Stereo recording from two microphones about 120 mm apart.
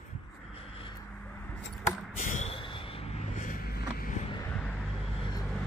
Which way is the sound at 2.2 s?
90° left.